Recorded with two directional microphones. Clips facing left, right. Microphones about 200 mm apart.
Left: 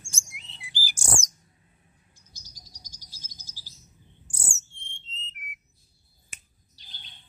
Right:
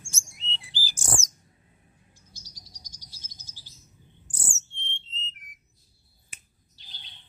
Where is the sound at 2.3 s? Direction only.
30° right (ahead or behind).